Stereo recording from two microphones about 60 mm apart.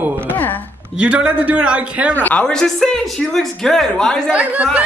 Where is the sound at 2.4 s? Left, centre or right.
Centre.